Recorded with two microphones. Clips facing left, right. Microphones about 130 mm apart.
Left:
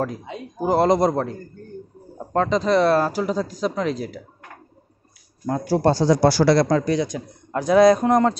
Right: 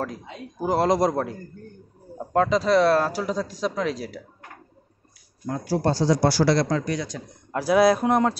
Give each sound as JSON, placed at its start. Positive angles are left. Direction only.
{"t": 0.0, "sound": "speech", "side_deg": 0}
{"t": 5.5, "sound": "speech", "side_deg": 55}
{"t": 6.8, "sound": "a man's voice", "side_deg": 30}
{"t": 7.5, "sound": "speech", "side_deg": -5}